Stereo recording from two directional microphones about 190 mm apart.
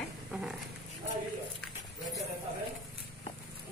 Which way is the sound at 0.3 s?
5° right (ahead or behind).